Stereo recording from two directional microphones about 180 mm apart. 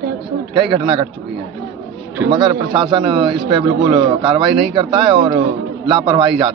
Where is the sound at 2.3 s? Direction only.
30° right (ahead or behind).